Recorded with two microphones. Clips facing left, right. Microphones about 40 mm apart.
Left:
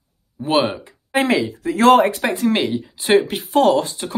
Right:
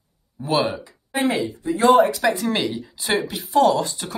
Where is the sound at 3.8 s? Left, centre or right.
Left.